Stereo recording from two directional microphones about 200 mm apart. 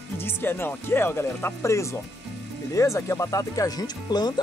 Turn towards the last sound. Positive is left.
turn(degrees=20)  # may be behind; listen again after turning